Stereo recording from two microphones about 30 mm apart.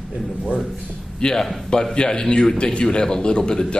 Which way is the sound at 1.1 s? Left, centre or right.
Left.